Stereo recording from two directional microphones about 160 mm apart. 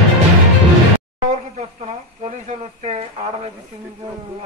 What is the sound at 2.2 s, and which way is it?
A woman's voice, 45° right (ahead or behind).